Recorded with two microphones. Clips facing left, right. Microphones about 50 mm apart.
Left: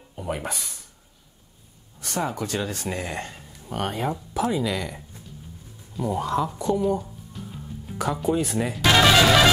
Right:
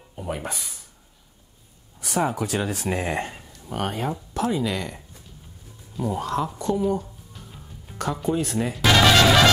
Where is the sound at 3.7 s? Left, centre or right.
Centre.